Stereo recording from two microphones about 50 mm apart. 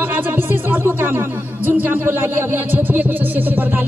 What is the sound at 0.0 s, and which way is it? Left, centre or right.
Speech, right.